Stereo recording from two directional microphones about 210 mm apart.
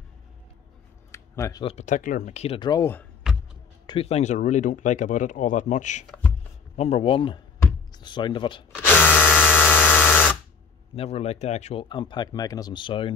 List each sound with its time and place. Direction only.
1.1 s a sound: 15° left (ahead or behind)
1.6 s speech: 30° left (ahead or behind); by 3.1 s 10° left (ahead or behind)
3.8 s speech: 25° left (ahead or behind)
6.0 s a sound: 5° left (ahead or behind)
6.8 s speech: 30° left (ahead or behind)
8.7 s drill: 10° left (ahead or behind)
9.2 s electric toothbrush: 10° left (ahead or behind)
9.6 s a sound: 10° left (ahead or behind)
11.0 s speech: 30° left (ahead or behind)